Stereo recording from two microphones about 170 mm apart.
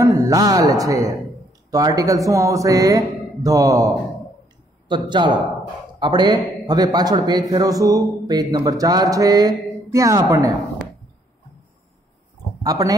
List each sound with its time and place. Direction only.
0.0 s a man's voice: 20° right (ahead or behind)
12.6 s a man's voice: 20° right (ahead or behind)